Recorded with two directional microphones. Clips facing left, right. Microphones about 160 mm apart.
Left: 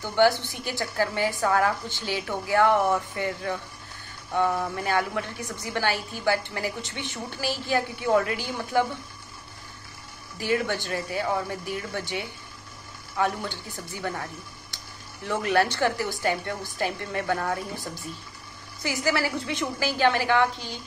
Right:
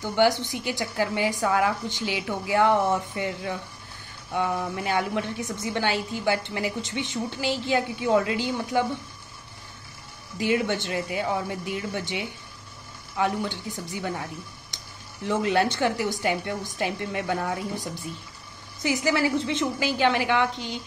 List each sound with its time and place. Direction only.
0.0 s a woman's voice: 15° right (ahead or behind)
10.3 s a woman's voice: 20° right (ahead or behind)
15.2 s a woman's voice: 20° right (ahead or behind)